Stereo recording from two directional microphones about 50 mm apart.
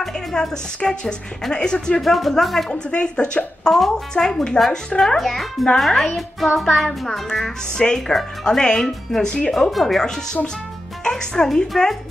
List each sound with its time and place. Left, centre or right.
0.0 s a woman's voice: centre
2.0 s a child's voice: centre
2.7 s a woman's voice: left
9.5 s a woman's voice: centre